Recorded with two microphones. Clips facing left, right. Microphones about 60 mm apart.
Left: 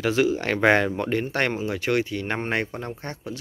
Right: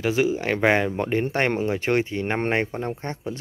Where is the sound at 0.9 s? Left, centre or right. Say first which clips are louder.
Right 1 dB; right.